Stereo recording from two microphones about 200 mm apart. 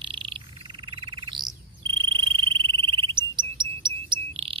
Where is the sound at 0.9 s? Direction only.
25° right (ahead or behind).